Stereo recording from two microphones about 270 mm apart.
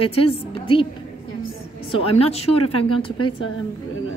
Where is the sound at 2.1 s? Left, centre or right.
Left.